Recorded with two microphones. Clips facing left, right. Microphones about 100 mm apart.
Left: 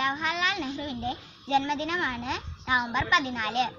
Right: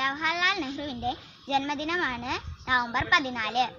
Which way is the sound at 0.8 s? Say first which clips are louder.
Right 1 dB; 35° left (ahead or behind).